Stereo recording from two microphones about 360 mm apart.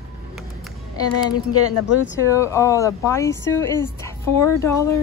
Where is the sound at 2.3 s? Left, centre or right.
Centre.